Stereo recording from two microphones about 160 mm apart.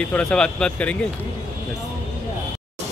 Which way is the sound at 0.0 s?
5° left (ahead or behind).